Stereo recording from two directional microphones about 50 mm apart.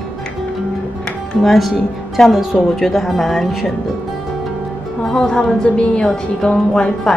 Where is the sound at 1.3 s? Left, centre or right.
Centre.